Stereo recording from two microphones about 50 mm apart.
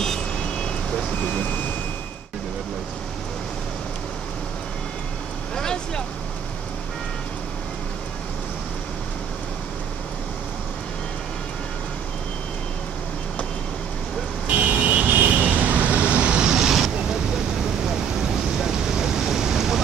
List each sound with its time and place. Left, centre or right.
0.0 s vehicle: centre
1.2 s speech: left
5.6 s vehicle: centre
14.5 s vehicle: right; by 17.2 s centre
17.8 s a sound: centre